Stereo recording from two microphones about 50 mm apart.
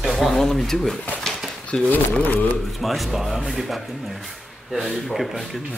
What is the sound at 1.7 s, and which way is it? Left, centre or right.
Speech, centre.